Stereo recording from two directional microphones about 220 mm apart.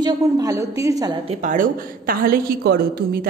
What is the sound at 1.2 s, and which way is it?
Speech, 30° right (ahead or behind).